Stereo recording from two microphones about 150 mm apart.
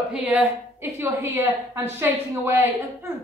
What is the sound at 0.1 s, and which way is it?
A woman's voice, 10° right (ahead or behind).